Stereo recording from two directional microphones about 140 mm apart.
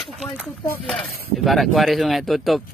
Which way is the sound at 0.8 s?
Centre (ahead or behind).